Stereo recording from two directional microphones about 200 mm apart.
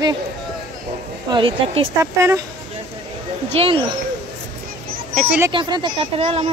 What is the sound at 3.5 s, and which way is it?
Speech, 30° right (ahead or behind).